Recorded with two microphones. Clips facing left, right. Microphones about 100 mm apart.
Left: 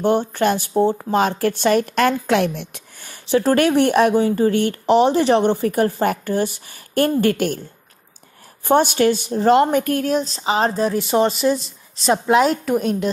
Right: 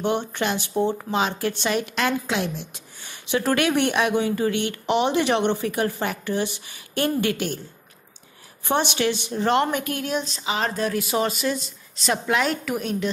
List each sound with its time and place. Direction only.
0.3 s a woman's voice: 40° left (ahead or behind); by 3.1 s 60° left (ahead or behind)
3.1 s a woman's voice: 35° left (ahead or behind)
8.6 s speech: 45° left (ahead or behind)
11.1 s speech: centre (ahead or behind)
12.1 s speech: 35° left (ahead or behind)